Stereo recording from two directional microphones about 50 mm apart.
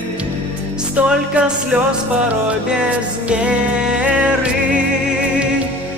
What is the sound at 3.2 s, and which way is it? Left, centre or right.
Music, right.